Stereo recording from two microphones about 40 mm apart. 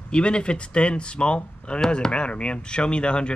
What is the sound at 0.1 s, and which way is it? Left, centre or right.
Speech, left.